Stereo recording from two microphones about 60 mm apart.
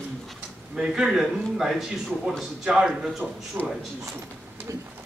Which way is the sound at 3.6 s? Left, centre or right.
Right.